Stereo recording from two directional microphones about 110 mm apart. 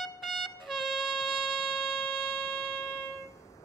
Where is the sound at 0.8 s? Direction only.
50° right (ahead or behind).